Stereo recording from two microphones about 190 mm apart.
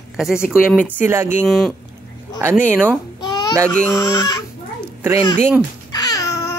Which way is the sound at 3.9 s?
20° left (ahead or behind).